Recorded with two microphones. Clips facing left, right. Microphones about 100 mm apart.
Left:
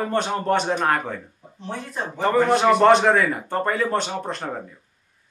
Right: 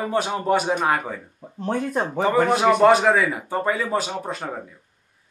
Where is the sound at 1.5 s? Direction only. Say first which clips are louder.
Right 8 dB; 50° right (ahead or behind).